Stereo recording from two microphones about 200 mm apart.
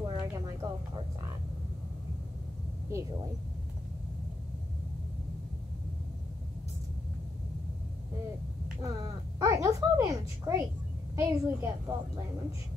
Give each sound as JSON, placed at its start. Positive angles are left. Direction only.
{"t": 0.1, "sound": "a sound", "side_deg": -20}
{"t": 2.9, "sound": "speech", "side_deg": -15}
{"t": 8.8, "sound": "a woman's voice", "side_deg": -15}